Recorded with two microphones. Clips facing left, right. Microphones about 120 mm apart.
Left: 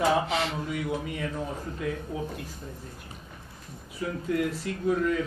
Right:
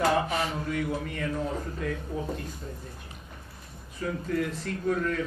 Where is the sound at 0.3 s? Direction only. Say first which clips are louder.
Left 1 dB; 80° left.